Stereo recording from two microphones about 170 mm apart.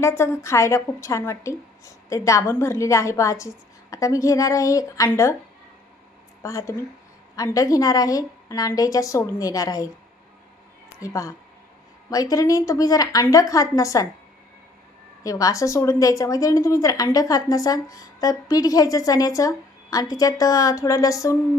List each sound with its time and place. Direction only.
0.0 s a woman's voice: 15° left (ahead or behind)
6.4 s a woman's voice: 20° left (ahead or behind)
11.0 s a woman's voice: 20° left (ahead or behind)
15.2 s a woman's voice: 20° left (ahead or behind)